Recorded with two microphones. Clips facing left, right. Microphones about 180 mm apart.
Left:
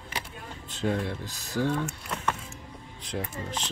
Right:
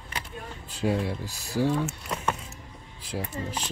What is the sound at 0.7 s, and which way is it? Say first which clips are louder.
Speech: right 2 dB; 10° right (ahead or behind).